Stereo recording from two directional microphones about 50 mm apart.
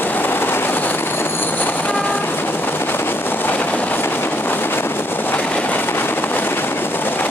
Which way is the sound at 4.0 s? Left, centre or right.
Left.